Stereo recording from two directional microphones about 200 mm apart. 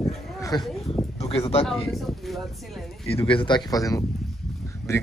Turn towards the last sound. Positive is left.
turn(degrees=15)  # may be behind; listen again after turning